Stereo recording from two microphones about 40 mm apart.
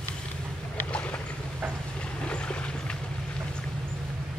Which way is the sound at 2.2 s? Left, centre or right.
Left.